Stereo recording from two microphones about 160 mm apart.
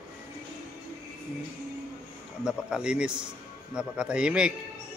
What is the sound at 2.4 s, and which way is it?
A man's voice, 5° right (ahead or behind).